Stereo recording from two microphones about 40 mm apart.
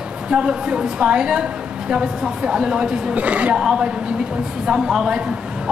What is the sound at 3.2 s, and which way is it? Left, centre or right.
Speech, right.